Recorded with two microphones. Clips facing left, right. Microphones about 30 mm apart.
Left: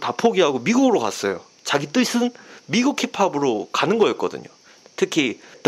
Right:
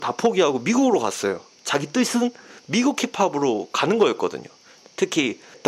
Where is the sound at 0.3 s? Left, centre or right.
Centre.